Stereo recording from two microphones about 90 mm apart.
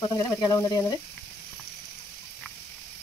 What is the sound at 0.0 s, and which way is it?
Speech, 45° left (ahead or behind).